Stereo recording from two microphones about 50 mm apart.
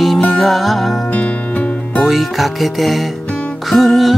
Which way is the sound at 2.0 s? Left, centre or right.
Centre.